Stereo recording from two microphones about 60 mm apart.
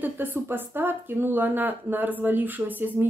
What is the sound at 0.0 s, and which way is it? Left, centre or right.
Speech, right.